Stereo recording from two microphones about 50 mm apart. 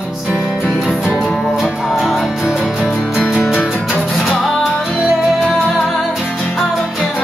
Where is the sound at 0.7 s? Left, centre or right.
Centre.